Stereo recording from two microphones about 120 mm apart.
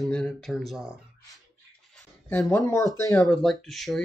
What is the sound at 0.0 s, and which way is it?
Speech, 5° left (ahead or behind).